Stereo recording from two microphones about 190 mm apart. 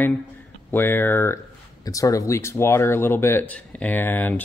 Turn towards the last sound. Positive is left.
turn(degrees=10)  # may be behind; listen again after turning